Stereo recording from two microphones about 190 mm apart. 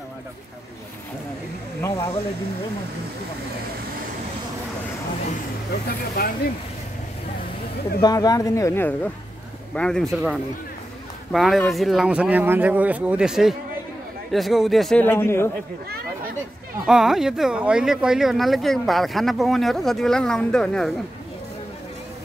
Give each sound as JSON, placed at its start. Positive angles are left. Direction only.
{"t": 1.8, "sound": "speech", "side_deg": 15}
{"t": 5.7, "sound": "speech", "side_deg": 55}
{"t": 8.0, "sound": "speech", "side_deg": 20}
{"t": 16.8, "sound": "speech", "side_deg": 0}